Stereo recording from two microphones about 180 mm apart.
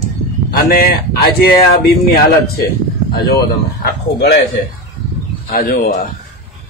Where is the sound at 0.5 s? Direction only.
55° left (ahead or behind).